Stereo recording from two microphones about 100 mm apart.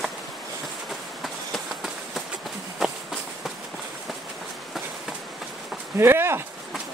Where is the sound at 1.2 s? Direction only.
Centre (ahead or behind).